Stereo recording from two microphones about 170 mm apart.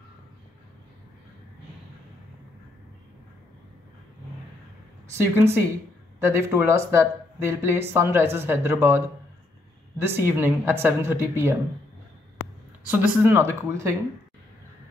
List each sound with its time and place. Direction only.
5.1 s speech: 15° right (ahead or behind)
12.8 s speech: 10° right (ahead or behind)